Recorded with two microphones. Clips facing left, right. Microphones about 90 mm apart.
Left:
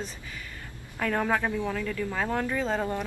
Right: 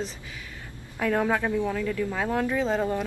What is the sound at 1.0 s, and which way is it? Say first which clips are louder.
Speech: right 2 dB; 5° right (ahead or behind).